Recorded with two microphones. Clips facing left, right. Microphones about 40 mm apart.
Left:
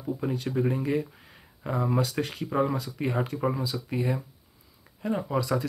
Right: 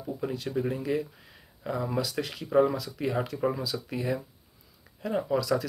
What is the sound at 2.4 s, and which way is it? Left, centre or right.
Speech, centre.